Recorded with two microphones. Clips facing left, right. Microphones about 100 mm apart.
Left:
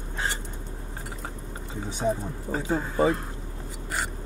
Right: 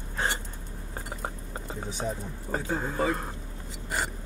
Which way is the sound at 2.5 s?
20° left (ahead or behind).